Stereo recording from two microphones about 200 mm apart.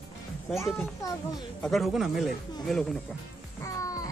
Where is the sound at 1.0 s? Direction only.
20° left (ahead or behind).